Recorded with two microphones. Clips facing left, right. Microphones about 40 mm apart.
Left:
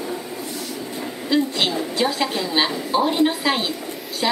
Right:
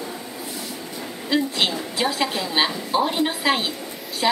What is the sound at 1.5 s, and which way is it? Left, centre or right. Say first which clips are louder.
A woman's voice: left 2 dB; centre.